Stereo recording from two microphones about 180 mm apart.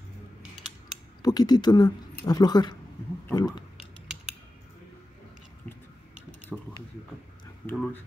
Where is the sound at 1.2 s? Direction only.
20° left (ahead or behind).